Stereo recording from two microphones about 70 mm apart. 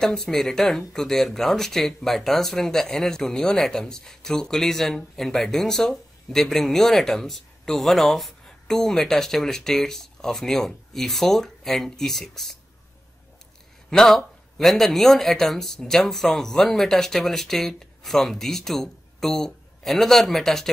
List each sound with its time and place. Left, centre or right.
0.0 s speech: centre
13.8 s speech: centre